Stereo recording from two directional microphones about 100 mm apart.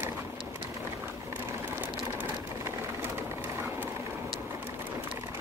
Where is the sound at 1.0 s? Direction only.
25° right (ahead or behind).